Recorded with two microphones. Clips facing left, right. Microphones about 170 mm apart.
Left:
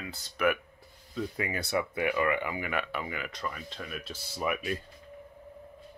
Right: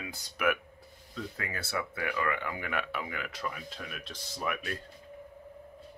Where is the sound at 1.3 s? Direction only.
20° left (ahead or behind).